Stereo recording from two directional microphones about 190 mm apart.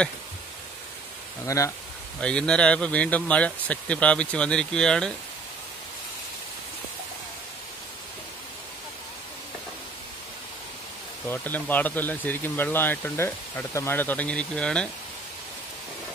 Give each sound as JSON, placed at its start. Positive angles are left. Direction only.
{"t": 1.4, "sound": "speech", "side_deg": 15}
{"t": 2.1, "sound": "speech", "side_deg": 5}
{"t": 11.2, "sound": "speech", "side_deg": 10}